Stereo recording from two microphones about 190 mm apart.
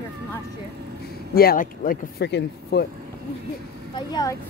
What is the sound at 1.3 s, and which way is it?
Speech, 50° left (ahead or behind).